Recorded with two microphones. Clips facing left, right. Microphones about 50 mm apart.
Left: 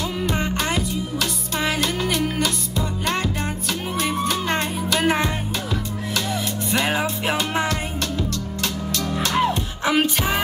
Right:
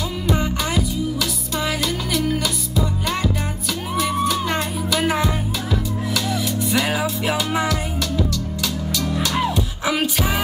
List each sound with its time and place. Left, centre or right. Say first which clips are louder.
0.4 s music: right 1 dB; left
6.7 s music: left 1 dB; left
9.3 s music: left 1 dB; centre